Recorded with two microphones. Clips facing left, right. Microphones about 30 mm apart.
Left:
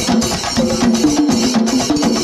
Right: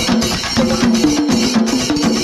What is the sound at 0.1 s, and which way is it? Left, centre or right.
Music, centre.